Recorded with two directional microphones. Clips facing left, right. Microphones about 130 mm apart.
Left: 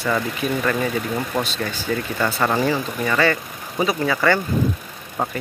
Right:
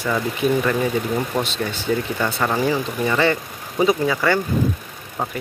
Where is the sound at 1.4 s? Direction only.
20° right (ahead or behind).